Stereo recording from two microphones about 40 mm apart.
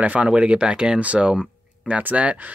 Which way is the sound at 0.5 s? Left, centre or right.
Right.